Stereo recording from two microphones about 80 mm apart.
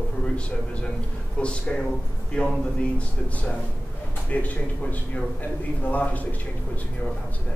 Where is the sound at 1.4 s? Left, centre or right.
Centre.